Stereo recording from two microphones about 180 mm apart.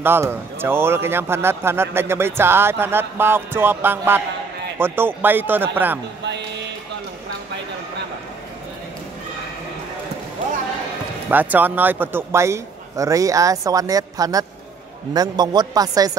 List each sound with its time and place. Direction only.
0.0 s a man's voice: 15° right (ahead or behind)
11.2 s a man's voice: 10° right (ahead or behind)